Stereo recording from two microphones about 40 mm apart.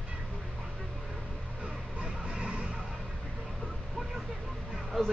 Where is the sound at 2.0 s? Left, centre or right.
Right.